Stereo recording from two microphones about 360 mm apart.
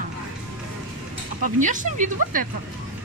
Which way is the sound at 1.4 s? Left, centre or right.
Right.